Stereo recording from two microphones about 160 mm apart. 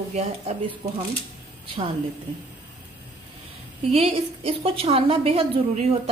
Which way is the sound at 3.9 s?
40° right (ahead or behind).